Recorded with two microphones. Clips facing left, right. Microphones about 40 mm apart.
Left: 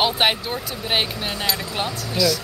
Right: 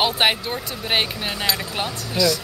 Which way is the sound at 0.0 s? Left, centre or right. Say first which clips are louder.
Even; centre.